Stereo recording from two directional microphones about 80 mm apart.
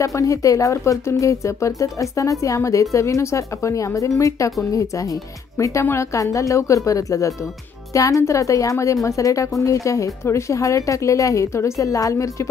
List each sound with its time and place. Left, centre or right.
0.0 s a woman's voice: left